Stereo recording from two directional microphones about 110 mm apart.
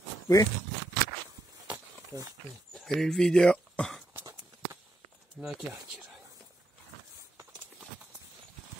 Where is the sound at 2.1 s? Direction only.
35° right (ahead or behind).